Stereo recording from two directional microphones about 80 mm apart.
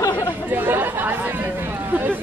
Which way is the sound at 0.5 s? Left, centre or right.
Right.